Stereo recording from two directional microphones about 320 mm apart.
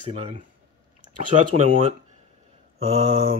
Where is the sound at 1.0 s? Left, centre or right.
Right.